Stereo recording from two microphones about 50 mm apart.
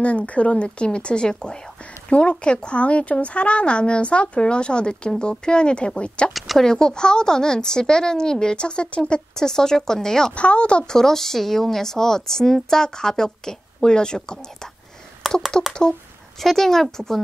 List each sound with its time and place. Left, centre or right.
0.0 s a woman's voice: left
6.3 s speech: centre
6.6 s a woman's voice: centre
10.3 s a woman's voice: left
11.0 s a woman's voice: centre
15.2 s a sound: centre
16.3 s a woman's voice: centre